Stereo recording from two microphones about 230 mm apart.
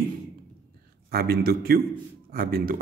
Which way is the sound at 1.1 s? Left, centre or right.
Right.